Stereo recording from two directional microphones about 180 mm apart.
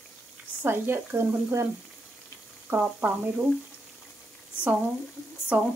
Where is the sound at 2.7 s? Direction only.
10° right (ahead or behind).